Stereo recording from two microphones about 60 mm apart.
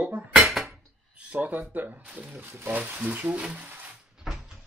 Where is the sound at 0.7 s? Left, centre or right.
Right.